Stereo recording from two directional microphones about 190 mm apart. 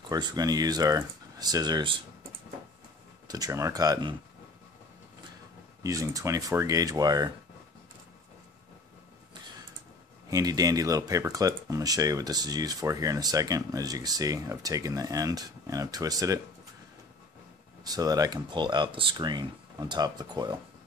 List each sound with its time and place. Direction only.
0.1 s speech: 20° right (ahead or behind)
3.3 s speech: 20° right (ahead or behind)
5.8 s speech: 15° right (ahead or behind)
10.3 s speech: 20° right (ahead or behind)
17.8 s speech: 20° right (ahead or behind)